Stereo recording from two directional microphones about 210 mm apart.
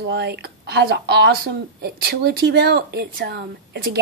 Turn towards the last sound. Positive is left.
turn(degrees=-50)  # may be behind; listen again after turning